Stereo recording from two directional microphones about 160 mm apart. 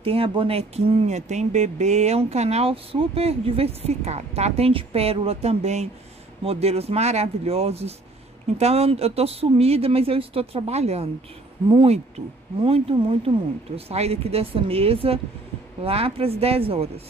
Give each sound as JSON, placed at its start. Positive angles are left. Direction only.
{"t": 0.0, "sound": "speech", "side_deg": -35}